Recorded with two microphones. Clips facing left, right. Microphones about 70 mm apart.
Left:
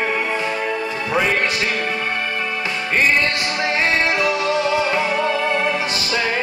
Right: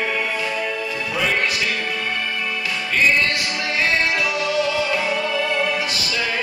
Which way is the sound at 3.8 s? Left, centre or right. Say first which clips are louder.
Left 1 dB; left.